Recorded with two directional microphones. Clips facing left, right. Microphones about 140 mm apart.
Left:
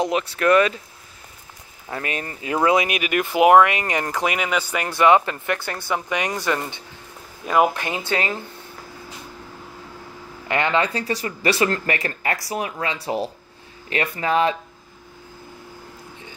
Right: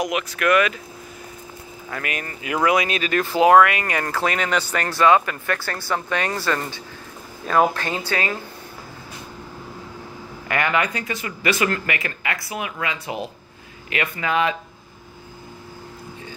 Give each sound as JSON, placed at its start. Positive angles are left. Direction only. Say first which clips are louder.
{"t": 0.0, "sound": "speech", "louder": "left 2 dB", "side_deg": 30}
{"t": 1.9, "sound": "speech", "louder": "left 2 dB", "side_deg": 30}
{"t": 10.5, "sound": "speech", "louder": "left 1 dB", "side_deg": 25}